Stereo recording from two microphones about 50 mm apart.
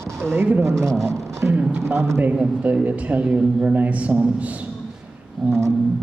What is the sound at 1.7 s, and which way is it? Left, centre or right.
Speech, right.